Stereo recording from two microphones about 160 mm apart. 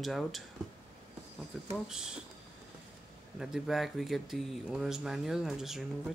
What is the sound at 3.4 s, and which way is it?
Speech, centre (ahead or behind).